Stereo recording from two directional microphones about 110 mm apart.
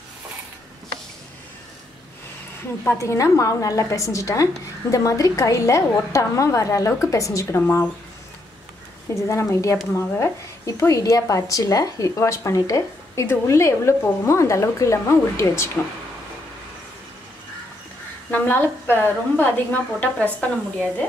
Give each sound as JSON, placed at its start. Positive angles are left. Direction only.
{"t": 2.8, "sound": "speech", "side_deg": 25}
{"t": 9.1, "sound": "speech", "side_deg": 25}
{"t": 18.3, "sound": "a woman's voice", "side_deg": 20}